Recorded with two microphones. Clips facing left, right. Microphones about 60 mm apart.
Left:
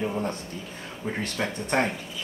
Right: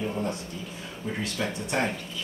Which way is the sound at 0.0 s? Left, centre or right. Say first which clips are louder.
Left 2 dB; left.